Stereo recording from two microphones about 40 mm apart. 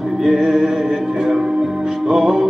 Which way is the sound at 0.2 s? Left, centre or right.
Centre.